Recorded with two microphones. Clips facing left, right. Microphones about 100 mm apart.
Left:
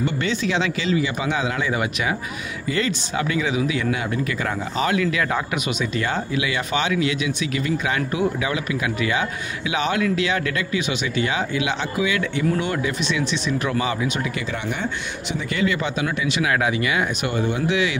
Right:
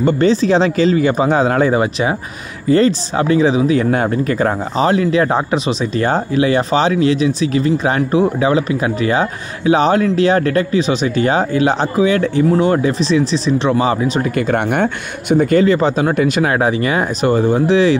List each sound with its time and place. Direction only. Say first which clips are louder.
0.0 s speech: right 10 dB; 35° right (ahead or behind)
14.3 s speech: right 11 dB; 55° right (ahead or behind); by 17.9 s 35° right (ahead or behind)